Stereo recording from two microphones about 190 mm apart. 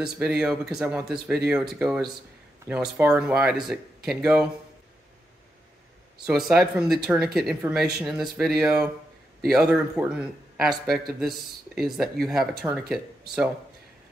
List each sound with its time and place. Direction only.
0.0 s speech: 5° right (ahead or behind)
6.2 s speech: 5° right (ahead or behind)